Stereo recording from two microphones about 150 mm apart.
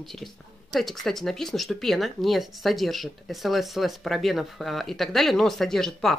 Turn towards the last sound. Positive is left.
turn(degrees=5)  # may be behind; listen again after turning